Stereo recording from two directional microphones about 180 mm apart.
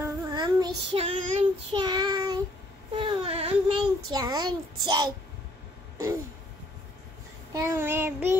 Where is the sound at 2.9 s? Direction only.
30° right (ahead or behind).